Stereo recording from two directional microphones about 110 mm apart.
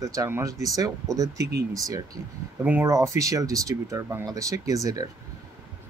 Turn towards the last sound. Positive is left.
turn(degrees=-35)  # may be behind; listen again after turning